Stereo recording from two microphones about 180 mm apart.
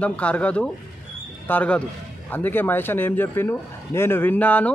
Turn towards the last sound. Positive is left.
turn(degrees=10)  # may be behind; listen again after turning